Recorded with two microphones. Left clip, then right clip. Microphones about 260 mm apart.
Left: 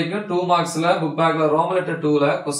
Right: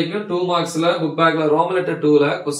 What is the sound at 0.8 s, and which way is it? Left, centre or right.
A man's voice, centre.